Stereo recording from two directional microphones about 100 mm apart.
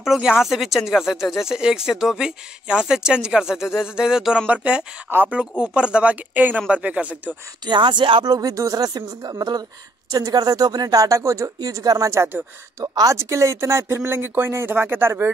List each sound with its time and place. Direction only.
0.0 s speech: 5° right (ahead or behind)
7.6 s speech: 50° right (ahead or behind); by 15.2 s 20° right (ahead or behind)